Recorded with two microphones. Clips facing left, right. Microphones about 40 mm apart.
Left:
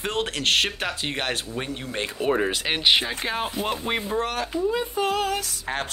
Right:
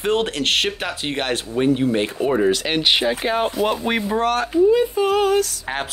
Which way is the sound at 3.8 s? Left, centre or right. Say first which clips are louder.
Right 5 dB; right.